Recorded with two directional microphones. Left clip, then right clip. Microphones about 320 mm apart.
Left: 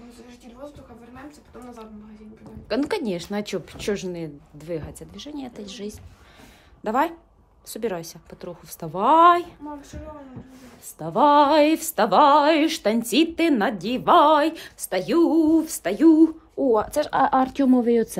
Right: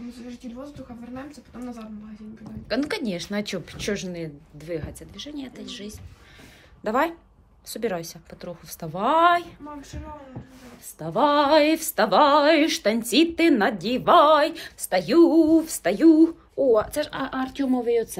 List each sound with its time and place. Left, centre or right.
2.7 s female singing: centre
6.8 s a woman's voice: centre
7.6 s female singing: centre
11.0 s female singing: centre